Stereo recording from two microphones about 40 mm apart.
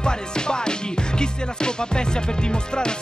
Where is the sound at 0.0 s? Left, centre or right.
Left.